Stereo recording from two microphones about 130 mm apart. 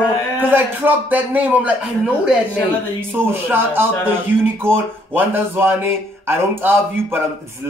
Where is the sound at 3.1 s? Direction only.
15° right (ahead or behind).